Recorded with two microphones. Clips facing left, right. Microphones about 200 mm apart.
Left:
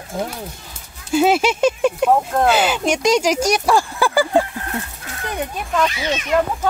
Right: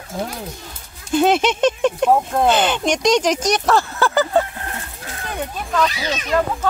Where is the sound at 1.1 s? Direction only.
5° left (ahead or behind).